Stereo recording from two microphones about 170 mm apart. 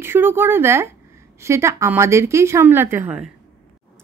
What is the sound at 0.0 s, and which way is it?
Speech, 15° right (ahead or behind).